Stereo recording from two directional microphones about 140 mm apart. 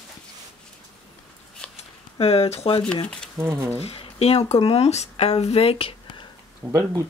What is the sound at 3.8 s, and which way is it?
Speech, 45° left (ahead or behind).